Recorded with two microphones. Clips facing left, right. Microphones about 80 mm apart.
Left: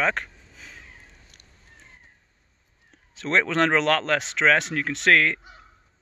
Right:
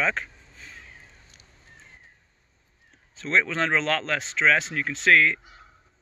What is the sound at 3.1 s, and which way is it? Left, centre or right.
Speech, left.